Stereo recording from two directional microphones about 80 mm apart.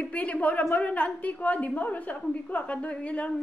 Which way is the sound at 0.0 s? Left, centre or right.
Centre.